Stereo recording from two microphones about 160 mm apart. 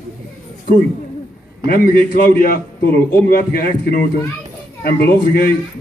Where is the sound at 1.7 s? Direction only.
70° left (ahead or behind).